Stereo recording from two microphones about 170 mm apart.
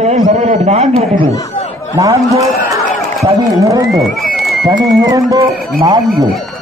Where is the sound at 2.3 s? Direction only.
20° right (ahead or behind).